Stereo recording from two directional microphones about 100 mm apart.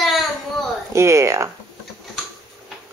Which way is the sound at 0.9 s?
30° right (ahead or behind).